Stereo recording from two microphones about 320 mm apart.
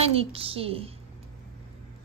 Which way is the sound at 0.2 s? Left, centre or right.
Centre.